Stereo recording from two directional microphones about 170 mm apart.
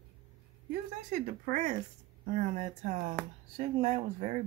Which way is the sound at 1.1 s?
50° right (ahead or behind).